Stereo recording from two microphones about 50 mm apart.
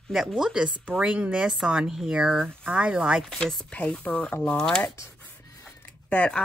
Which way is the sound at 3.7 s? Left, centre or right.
Left.